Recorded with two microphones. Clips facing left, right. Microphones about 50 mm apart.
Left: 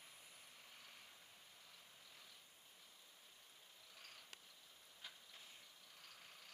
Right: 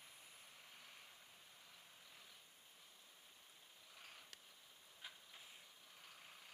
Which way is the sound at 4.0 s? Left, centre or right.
Centre.